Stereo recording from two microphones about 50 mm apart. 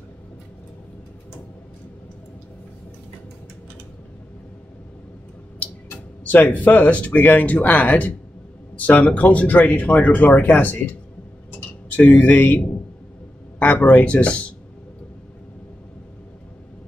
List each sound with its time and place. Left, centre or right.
5.6 s speech: left
11.9 s speech: left